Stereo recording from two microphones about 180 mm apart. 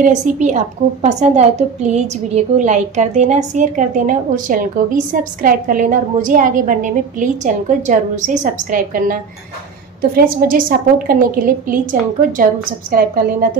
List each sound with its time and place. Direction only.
0.0 s a woman's voice: 40° right (ahead or behind)